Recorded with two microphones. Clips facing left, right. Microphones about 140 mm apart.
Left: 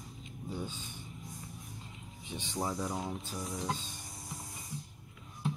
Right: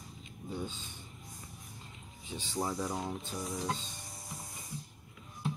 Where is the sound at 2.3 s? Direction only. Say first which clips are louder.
Even; 20° left (ahead or behind).